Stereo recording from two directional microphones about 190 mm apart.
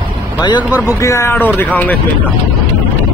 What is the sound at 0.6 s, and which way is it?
Speech, 10° right (ahead or behind).